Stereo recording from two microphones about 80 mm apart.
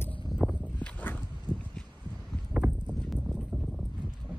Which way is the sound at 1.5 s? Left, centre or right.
Centre.